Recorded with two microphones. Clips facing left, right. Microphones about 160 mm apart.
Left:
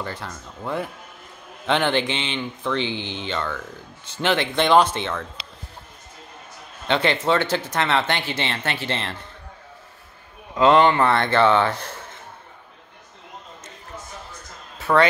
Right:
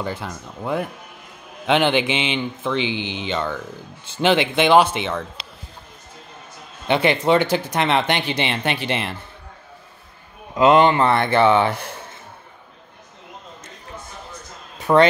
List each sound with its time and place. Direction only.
0.0 s speech: 15° right (ahead or behind)
6.9 s speech: 15° right (ahead or behind)
10.6 s speech: 10° right (ahead or behind)
14.8 s a sound: 15° right (ahead or behind)